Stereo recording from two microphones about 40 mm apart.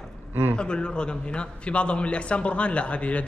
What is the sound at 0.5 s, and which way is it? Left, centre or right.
A man's voice, left.